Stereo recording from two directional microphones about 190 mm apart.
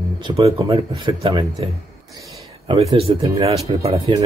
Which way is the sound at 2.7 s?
25° right (ahead or behind).